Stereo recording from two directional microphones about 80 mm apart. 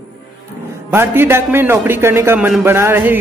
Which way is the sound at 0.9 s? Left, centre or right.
Right.